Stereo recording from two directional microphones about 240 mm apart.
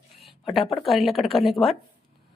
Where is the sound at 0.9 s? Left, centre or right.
Centre.